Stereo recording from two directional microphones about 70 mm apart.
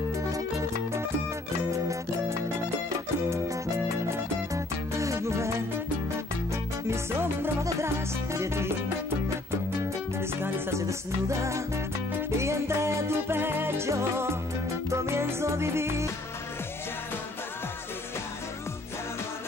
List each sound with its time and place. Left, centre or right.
0.3 s music: right
10.1 s music: right